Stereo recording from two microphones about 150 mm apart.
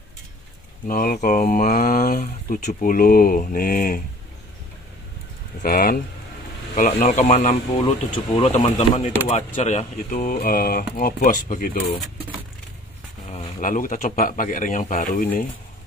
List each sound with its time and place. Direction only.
0.8 s speech: 70° left (ahead or behind)
5.6 s speech: 75° left (ahead or behind)
6.7 s speech: 50° left (ahead or behind)
10.3 s speech: 85° left
13.6 s speech: 60° left (ahead or behind)